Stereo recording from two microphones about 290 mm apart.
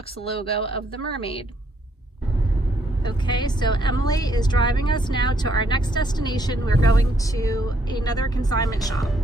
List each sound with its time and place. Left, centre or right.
0.2 s speech: centre
3.0 s a woman's voice: centre